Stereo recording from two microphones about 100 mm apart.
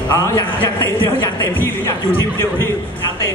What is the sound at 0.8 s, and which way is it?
Speech, 20° left (ahead or behind).